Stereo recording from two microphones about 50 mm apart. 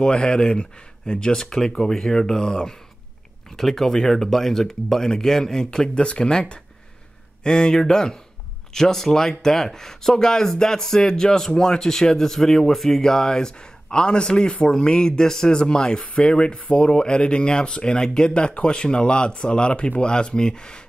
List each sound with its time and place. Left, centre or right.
0.0 s speech: centre
7.4 s speech: centre